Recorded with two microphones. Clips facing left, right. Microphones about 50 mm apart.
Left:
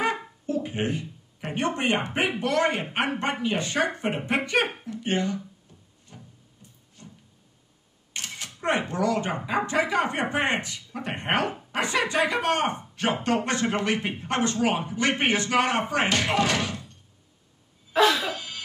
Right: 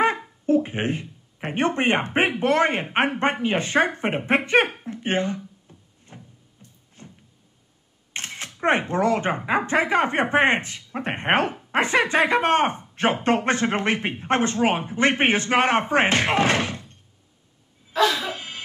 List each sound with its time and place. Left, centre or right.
0.0 s a sound: right
2.1 s a woman's voice: right
5.7 s music: right
6.1 s a sound: right
7.0 s cupboard open or close: right
8.1 s a woman's voice: right
18.3 s music: right